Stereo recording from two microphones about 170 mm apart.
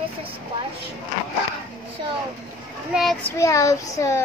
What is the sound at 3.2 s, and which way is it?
Speech, 20° left (ahead or behind).